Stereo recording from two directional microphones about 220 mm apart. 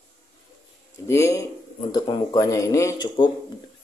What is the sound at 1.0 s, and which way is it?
Speech, 10° left (ahead or behind).